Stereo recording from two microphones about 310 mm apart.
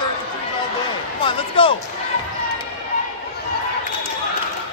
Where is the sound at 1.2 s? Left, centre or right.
Centre.